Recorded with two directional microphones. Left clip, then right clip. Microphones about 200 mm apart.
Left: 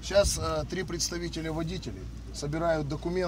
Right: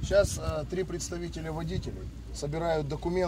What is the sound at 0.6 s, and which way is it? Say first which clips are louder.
Speech: left 1 dB; 15° left (ahead or behind).